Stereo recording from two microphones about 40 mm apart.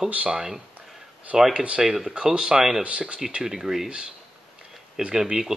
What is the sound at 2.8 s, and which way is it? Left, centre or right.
Speech, right.